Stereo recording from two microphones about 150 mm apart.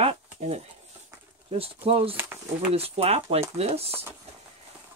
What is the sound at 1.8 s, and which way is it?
Speech, 40° right (ahead or behind).